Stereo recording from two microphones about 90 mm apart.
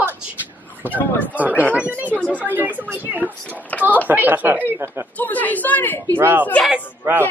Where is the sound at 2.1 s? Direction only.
15° left (ahead or behind).